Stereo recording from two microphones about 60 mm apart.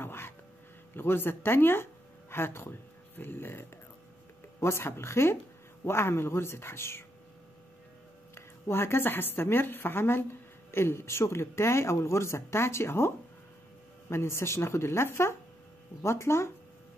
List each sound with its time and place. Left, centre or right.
0.0 s a sound: left
0.9 s a woman's voice: left
8.4 s a woman's voice: left